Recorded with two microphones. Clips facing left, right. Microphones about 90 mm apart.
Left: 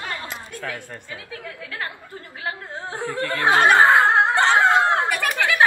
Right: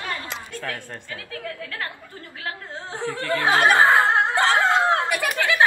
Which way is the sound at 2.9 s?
15° left (ahead or behind).